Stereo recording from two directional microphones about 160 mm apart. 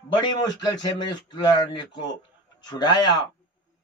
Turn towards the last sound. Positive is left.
turn(degrees=25)  # may be behind; listen again after turning